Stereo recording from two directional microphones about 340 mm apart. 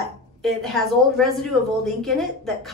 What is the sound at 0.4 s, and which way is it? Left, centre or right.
A woman's voice, centre.